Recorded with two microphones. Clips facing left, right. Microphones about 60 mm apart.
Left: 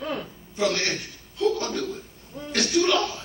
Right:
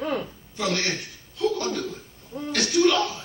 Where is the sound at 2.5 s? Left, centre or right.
Left.